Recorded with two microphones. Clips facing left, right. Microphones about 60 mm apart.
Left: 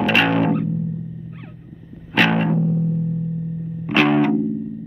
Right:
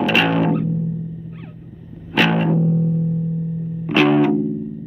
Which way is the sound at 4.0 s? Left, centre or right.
Left.